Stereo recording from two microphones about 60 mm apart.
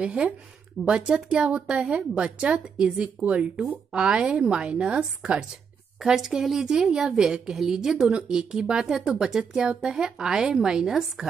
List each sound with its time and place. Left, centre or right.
0.0 s a woman's voice: right